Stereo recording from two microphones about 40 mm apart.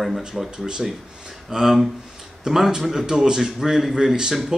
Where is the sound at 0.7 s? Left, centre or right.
Centre.